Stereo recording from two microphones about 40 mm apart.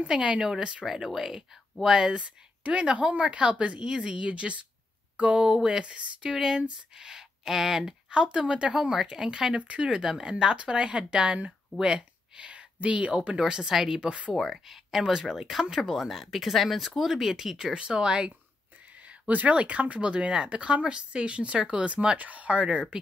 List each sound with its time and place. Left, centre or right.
0.1 s speech: right
0.9 s speech: centre
2.6 s speech: right
4.3 s a woman's voice: right
6.3 s speech: centre
8.1 s speech: right
9.6 s speech: right
13.4 s speech: centre
14.0 s speech: right
14.3 s speech: centre
14.7 s speech: centre
17.7 s speech: right
19.0 s speech: right